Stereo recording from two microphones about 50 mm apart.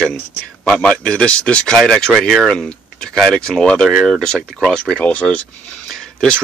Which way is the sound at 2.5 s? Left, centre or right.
Left.